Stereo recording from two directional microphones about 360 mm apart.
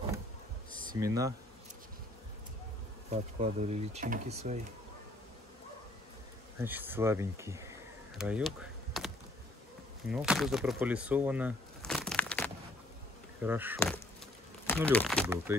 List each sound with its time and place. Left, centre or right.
0.9 s speech: centre
3.1 s speech: centre
6.6 s speech: centre
8.2 s a sound: centre
10.0 s speech: centre
13.7 s speech: centre